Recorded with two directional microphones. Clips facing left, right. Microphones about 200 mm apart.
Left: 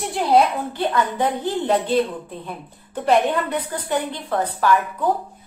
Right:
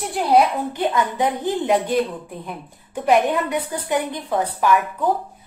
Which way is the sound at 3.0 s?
10° right (ahead or behind).